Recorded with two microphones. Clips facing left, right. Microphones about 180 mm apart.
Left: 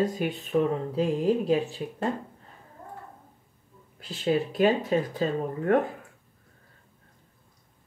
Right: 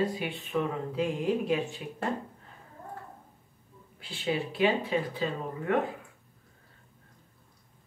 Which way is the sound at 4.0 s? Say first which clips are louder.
Left 5 dB; 45° left (ahead or behind).